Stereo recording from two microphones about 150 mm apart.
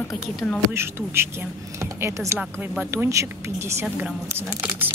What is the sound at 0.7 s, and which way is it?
A woman's voice, 15° right (ahead or behind).